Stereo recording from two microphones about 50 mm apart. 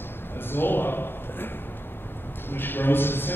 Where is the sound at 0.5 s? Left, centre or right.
Left.